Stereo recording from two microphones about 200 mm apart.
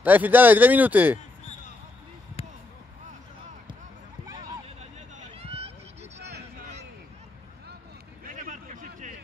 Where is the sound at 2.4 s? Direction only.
30° left (ahead or behind).